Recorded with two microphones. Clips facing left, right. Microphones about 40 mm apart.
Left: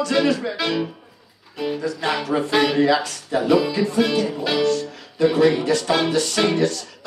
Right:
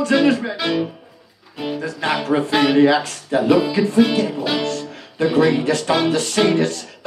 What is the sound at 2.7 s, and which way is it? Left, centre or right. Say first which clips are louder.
Music: right 4 dB; right.